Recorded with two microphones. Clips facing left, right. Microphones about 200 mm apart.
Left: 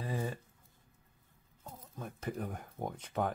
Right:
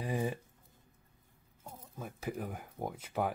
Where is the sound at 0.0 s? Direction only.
15° right (ahead or behind).